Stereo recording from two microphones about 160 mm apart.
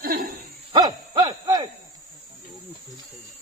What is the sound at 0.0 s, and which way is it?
Owl, 65° right (ahead or behind).